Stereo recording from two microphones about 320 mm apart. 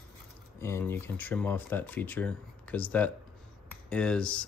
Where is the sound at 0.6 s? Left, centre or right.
Centre.